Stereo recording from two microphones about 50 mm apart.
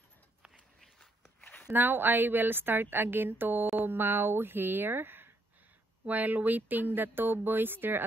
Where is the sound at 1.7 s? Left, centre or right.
Right.